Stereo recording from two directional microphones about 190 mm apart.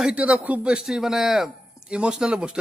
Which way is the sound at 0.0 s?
5° right (ahead or behind).